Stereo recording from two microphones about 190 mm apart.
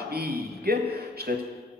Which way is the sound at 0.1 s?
55° right (ahead or behind).